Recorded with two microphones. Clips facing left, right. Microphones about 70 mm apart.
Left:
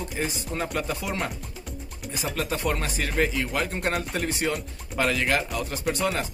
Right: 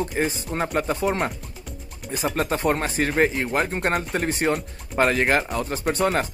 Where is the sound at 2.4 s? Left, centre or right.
Right.